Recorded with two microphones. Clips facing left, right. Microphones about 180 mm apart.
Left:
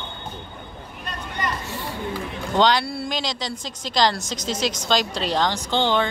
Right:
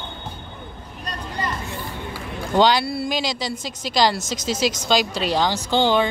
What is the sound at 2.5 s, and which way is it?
Speech, 5° right (ahead or behind).